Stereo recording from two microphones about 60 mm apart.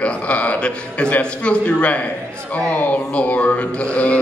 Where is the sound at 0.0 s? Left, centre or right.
Left.